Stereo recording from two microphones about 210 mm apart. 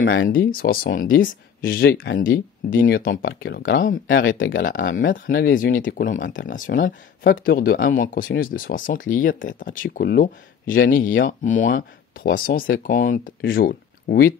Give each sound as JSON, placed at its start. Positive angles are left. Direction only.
{"t": 0.3, "sound": "speech", "side_deg": 45}
{"t": 4.1, "sound": "speech", "side_deg": 65}
{"t": 4.8, "sound": "speech", "side_deg": 40}